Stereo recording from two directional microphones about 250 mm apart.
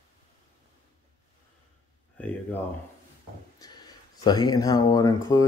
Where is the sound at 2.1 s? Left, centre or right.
Centre.